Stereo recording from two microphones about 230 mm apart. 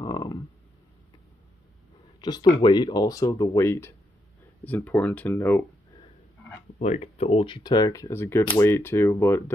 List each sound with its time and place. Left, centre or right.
0.0 s a sound: centre
2.2 s speech: centre
6.8 s speech: left; by 9.4 s centre